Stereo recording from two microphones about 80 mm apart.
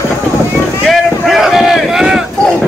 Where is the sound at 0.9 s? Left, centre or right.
Centre.